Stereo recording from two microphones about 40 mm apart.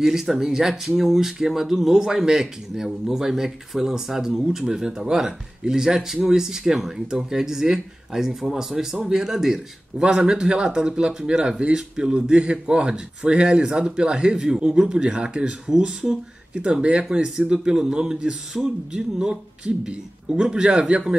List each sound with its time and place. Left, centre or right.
0.0 s speech: centre
9.9 s a man's voice: centre